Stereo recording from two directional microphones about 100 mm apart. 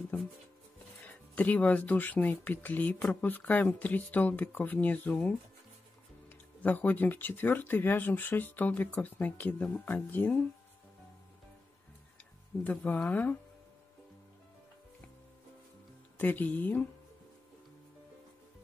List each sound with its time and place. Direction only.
1.3 s speech: 15° left (ahead or behind)
12.6 s speech: 15° left (ahead or behind)
16.2 s speech: 15° left (ahead or behind)